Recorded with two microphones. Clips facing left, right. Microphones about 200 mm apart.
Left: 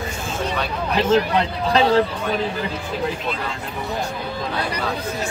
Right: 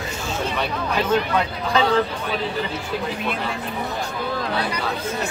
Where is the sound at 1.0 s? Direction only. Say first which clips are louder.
Left 4 dB; 25° left (ahead or behind).